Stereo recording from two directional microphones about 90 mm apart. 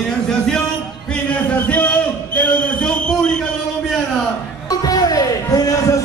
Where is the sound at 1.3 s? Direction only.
15° left (ahead or behind).